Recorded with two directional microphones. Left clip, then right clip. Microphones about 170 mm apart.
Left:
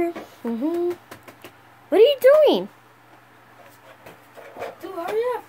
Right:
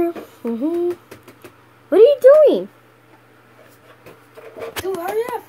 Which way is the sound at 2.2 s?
15° left (ahead or behind).